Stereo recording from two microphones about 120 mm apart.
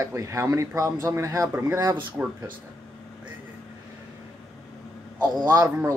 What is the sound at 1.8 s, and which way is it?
Speech, 35° right (ahead or behind).